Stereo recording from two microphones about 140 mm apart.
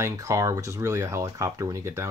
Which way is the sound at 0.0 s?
20° right (ahead or behind).